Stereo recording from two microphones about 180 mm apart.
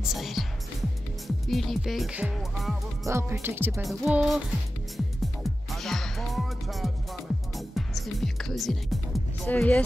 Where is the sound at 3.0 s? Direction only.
15° right (ahead or behind).